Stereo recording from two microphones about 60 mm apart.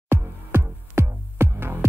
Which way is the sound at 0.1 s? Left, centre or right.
Right.